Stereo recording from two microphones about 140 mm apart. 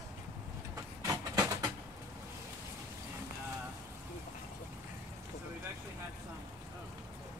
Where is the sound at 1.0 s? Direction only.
25° right (ahead or behind).